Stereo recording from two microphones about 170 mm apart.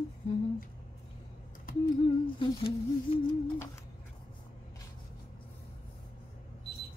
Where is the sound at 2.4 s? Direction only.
35° left (ahead or behind).